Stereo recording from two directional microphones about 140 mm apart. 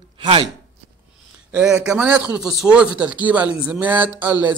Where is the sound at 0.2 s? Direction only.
35° right (ahead or behind).